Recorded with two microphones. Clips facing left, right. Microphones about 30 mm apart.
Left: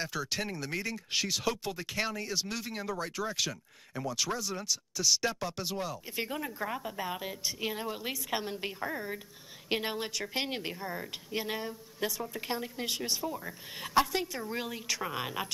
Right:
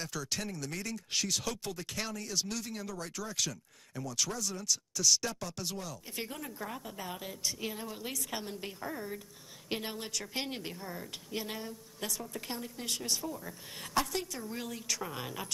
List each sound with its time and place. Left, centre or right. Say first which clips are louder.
0.0 s speech: left 3 dB; left